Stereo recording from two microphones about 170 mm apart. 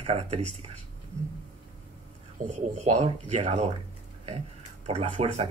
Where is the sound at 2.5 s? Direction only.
40° right (ahead or behind).